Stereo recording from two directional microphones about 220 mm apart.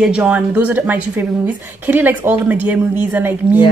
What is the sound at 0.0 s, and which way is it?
Speech, 5° right (ahead or behind).